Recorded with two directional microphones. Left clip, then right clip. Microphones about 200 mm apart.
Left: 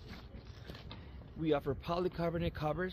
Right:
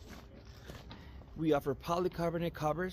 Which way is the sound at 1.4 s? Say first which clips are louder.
Right 2 dB; 30° right (ahead or behind).